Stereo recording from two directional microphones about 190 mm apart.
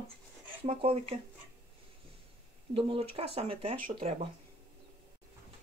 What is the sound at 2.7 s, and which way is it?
Speech, 30° right (ahead or behind).